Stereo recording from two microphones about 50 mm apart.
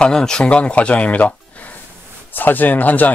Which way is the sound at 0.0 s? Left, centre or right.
Centre.